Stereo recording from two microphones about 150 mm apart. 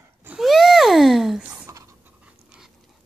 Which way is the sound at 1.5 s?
20° right (ahead or behind).